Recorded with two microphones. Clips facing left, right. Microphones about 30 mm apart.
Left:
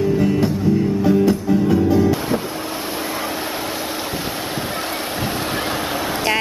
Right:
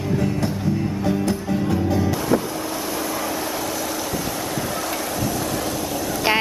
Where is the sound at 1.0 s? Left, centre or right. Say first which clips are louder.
Left 6 dB; centre.